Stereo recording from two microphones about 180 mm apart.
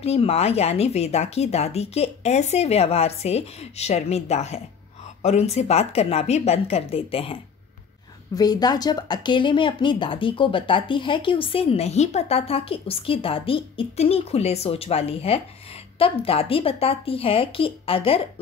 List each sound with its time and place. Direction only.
0.0 s speech: 35° left (ahead or behind)
8.4 s speech: 20° left (ahead or behind)